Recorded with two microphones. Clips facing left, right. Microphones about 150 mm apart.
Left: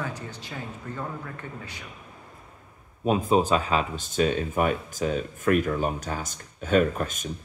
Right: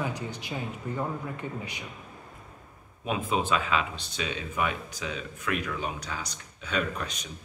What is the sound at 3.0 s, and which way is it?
Speech, 40° left (ahead or behind).